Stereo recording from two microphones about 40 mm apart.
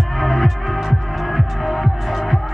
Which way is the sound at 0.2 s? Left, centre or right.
Centre.